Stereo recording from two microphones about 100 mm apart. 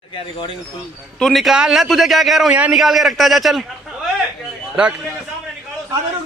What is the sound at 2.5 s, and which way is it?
Speech, 15° right (ahead or behind).